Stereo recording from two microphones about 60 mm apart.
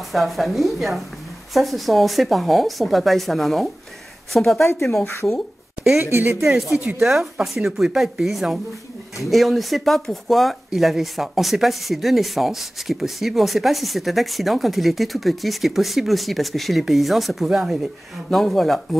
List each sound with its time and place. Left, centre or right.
0.1 s speech: centre
5.0 s speech: left
5.9 s speech: right
7.0 s speech: centre